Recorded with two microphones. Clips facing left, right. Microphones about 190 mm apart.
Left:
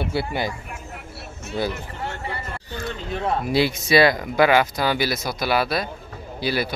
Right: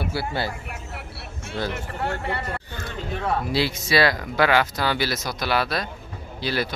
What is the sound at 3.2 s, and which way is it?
Speech, 15° left (ahead or behind).